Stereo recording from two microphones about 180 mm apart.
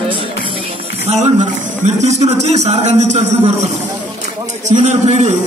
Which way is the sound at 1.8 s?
40° right (ahead or behind).